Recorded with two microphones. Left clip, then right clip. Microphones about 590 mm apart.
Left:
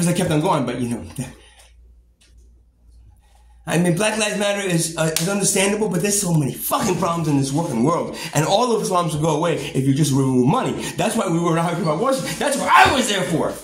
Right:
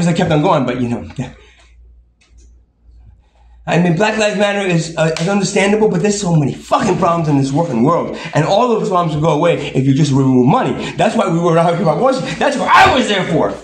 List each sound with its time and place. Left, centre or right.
0.0 s a man's voice: left
3.6 s a man's voice: left